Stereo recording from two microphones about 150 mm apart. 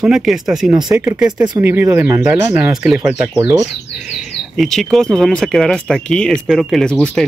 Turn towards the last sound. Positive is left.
turn(degrees=5)  # may be behind; listen again after turning